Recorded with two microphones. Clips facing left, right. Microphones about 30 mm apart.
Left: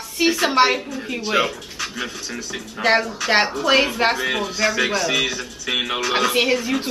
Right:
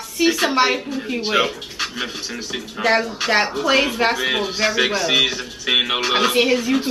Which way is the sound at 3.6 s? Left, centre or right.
Centre.